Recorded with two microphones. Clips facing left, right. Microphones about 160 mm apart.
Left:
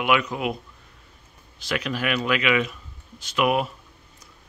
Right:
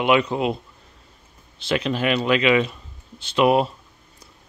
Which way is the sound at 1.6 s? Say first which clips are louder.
Right 5 dB; 25° right (ahead or behind).